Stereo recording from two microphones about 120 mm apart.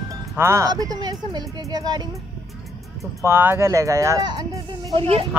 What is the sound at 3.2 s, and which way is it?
Speech, 20° right (ahead or behind).